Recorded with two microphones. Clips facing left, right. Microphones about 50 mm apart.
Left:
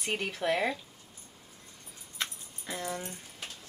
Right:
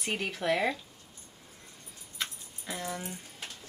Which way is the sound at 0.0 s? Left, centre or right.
Centre.